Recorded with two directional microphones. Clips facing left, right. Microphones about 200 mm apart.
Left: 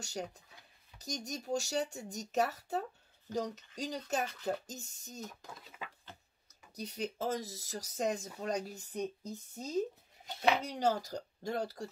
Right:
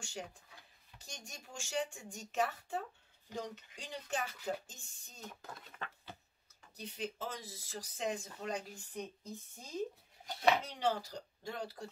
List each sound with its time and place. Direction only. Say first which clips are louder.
0.0 s speech: left 5 dB; 40° left (ahead or behind)
5.2 s speech: even; centre (ahead or behind)
6.7 s speech: left 4 dB; 40° left (ahead or behind)